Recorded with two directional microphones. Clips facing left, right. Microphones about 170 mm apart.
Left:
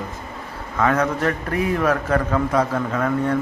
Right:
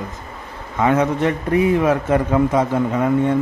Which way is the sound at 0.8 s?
20° right (ahead or behind).